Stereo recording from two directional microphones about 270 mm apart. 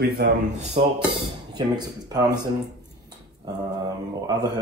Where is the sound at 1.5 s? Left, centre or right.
Centre.